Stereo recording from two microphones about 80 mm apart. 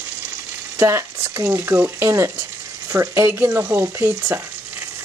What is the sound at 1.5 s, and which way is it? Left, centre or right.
Frying, right.